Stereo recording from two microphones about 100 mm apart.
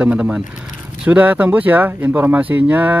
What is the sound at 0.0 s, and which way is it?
Speech, 10° right (ahead or behind).